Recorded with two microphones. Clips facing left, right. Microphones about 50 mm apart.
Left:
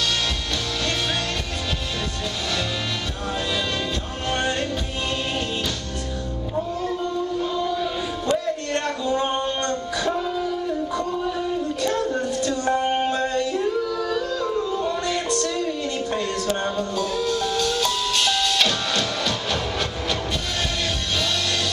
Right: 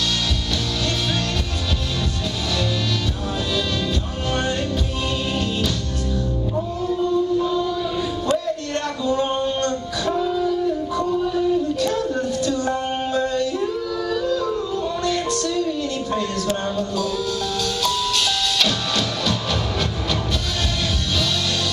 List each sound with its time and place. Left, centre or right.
4.3 s music: centre
8.3 s a sound: centre
11.2 s child singing: centre
12.1 s music: centre
12.6 s music: centre
13.1 s yodeling: left
13.4 s yodeling: centre
14.3 s music: centre